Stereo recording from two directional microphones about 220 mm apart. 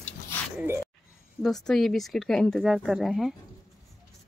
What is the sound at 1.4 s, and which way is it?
Speech, centre (ahead or behind).